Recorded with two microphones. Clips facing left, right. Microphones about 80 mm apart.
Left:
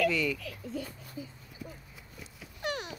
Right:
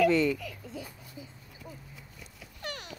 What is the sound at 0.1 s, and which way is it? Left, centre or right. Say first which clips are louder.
Speech: right 6 dB; right.